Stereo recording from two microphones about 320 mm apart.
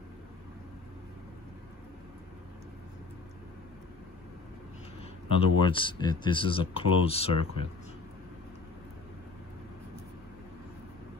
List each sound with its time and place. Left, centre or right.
5.3 s speech: centre